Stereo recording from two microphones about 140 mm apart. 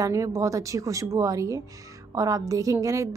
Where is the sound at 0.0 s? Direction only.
20° right (ahead or behind).